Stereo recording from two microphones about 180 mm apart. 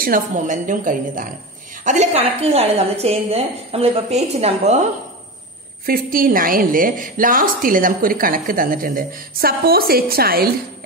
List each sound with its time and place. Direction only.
0.0 s a woman's voice: 50° right (ahead or behind)
1.9 s a woman's voice: 35° right (ahead or behind)
5.9 s a woman's voice: 55° right (ahead or behind)